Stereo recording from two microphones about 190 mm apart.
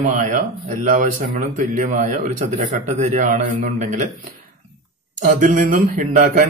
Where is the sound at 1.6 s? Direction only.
45° right (ahead or behind).